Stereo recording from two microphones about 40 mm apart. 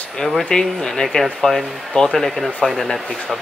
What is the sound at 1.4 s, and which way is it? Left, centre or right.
Speech, centre.